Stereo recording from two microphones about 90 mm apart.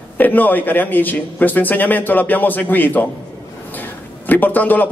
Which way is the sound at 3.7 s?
20° left (ahead or behind).